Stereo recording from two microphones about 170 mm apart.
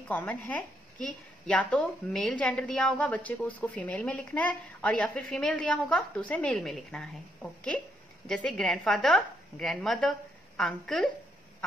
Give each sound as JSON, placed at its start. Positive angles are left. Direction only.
{"t": 0.1, "sound": "a woman's voice", "side_deg": 10}